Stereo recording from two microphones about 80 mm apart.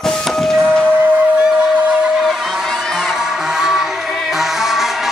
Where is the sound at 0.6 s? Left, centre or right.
Right.